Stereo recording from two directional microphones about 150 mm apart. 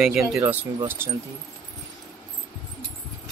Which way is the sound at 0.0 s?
Centre (ahead or behind).